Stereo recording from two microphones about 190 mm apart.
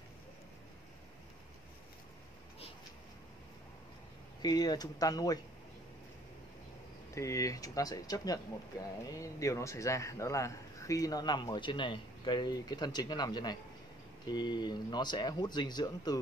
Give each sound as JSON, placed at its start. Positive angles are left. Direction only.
{"t": 4.4, "sound": "speech", "side_deg": 20}
{"t": 7.2, "sound": "speech", "side_deg": 15}